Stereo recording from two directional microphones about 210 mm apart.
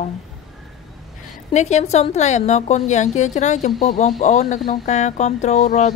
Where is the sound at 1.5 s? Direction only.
35° left (ahead or behind).